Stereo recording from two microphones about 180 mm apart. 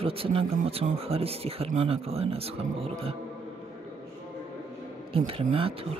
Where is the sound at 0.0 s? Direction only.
30° right (ahead or behind).